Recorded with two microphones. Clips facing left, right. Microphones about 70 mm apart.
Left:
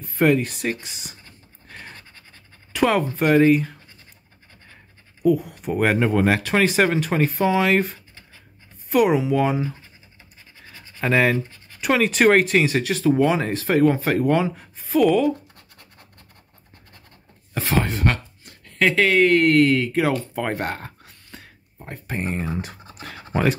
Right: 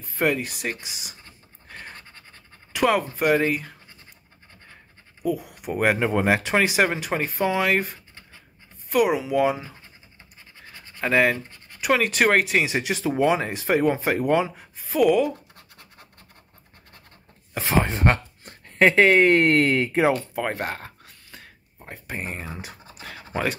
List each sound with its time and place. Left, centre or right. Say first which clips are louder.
0.0 s speech: left 5 dB; centre
1.7 s scratch: even; centre
2.7 s speech: left 2 dB; centre
5.2 s speech: left 7 dB; centre
10.7 s scratch: left 1 dB; centre
11.8 s speech: left 3 dB; centre
17.6 s speech: even; centre
20.3 s a sound: left 2 dB; centre